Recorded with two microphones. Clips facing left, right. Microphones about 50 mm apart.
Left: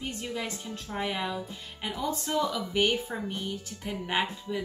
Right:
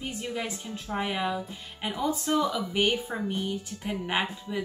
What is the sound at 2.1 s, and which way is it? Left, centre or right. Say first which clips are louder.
Speech: right 2 dB; centre.